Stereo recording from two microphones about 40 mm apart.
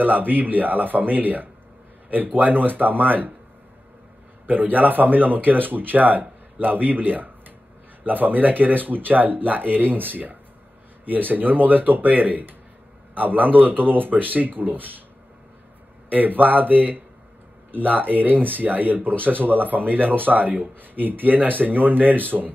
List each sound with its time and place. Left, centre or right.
0.0 s speech: right
4.5 s speech: right
16.1 s speech: right